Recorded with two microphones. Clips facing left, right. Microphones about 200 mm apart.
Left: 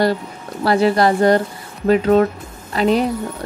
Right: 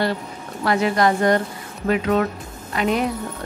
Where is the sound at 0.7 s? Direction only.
35° left (ahead or behind).